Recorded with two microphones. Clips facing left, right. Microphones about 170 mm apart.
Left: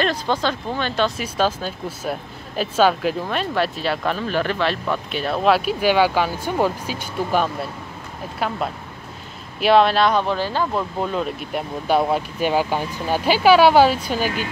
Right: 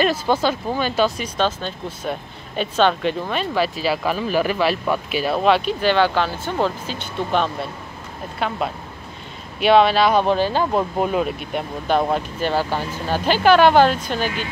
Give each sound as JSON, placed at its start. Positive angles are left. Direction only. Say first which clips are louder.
{"t": 0.0, "sound": "speech", "louder": "right 3 dB", "side_deg": -10}
{"t": 1.2, "sound": "speech", "louder": "left 1 dB", "side_deg": 5}
{"t": 10.1, "sound": "speech", "louder": "right 3 dB", "side_deg": -20}
{"t": 11.2, "sound": "speech", "louder": "right 1 dB", "side_deg": 0}